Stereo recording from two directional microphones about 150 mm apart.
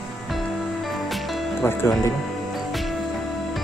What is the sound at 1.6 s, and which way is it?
Speech, 15° left (ahead or behind).